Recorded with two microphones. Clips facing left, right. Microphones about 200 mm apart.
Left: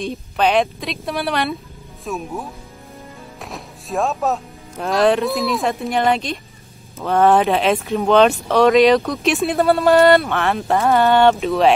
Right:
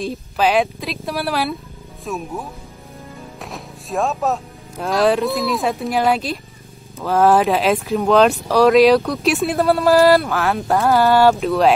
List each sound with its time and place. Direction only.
0.0 s speech: centre (ahead or behind)